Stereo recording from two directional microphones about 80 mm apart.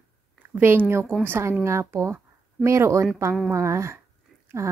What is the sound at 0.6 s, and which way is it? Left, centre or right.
A woman's voice, right.